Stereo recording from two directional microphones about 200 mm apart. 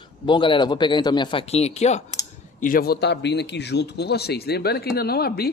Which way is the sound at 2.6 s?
45° left (ahead or behind).